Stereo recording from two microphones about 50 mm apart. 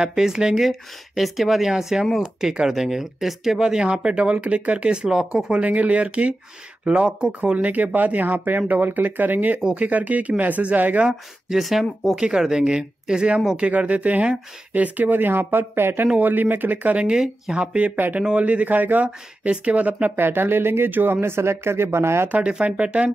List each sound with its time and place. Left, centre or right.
0.0 s speech: centre
7.5 s speech: right
11.1 s speech: centre
13.6 s speech: right
16.2 s speech: right
17.0 s speech: centre
17.7 s speech: right
20.2 s speech: right
22.3 s speech: right